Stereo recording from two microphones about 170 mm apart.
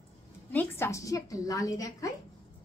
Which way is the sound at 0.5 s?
15° left (ahead or behind).